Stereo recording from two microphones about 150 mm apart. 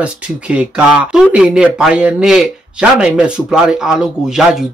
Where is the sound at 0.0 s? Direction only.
10° right (ahead or behind).